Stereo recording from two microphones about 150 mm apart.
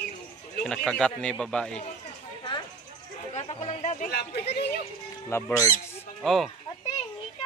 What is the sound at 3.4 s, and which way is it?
Chatter, 45° left (ahead or behind).